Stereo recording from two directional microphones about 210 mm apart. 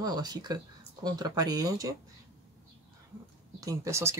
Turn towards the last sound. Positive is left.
turn(degrees=-15)  # may be behind; listen again after turning